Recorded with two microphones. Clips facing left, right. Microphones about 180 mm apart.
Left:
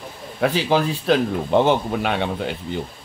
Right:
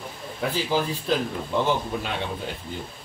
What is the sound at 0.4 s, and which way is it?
A man's voice, 75° left (ahead or behind).